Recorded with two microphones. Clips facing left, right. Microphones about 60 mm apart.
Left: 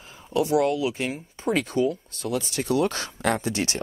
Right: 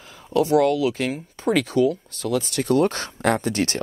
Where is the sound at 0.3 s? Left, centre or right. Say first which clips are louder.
Right 4 dB; right.